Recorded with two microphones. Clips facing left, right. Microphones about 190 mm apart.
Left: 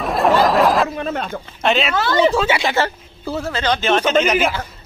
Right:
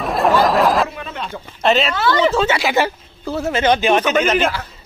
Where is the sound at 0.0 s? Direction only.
Centre (ahead or behind).